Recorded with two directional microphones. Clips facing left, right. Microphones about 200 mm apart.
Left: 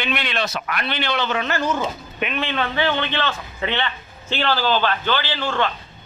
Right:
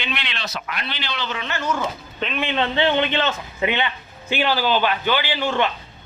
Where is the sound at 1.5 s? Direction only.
35° left (ahead or behind).